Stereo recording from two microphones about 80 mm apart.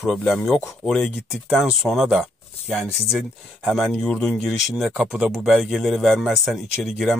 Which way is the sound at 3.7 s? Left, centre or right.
Centre.